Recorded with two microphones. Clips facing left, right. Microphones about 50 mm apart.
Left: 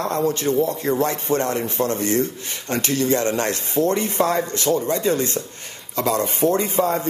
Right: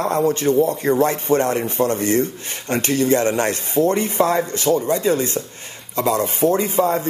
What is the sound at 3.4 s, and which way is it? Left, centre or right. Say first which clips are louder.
Speech: right 3 dB; right.